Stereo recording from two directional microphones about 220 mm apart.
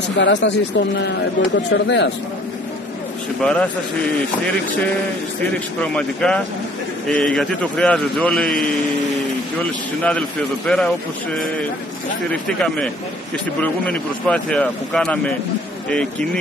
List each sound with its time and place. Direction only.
0.2 s speech: 55° left (ahead or behind)
3.4 s speech: 5° left (ahead or behind)
5.8 s speech: 5° left (ahead or behind)
10.7 s speech: 5° left (ahead or behind)
12.3 s speech: 5° left (ahead or behind)